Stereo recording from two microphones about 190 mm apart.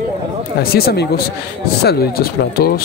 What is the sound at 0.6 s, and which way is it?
Speech, 55° left (ahead or behind).